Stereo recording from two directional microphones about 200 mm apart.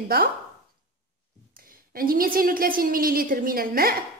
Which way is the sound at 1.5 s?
45° right (ahead or behind).